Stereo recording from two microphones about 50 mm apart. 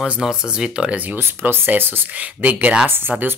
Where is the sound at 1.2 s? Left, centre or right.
Right.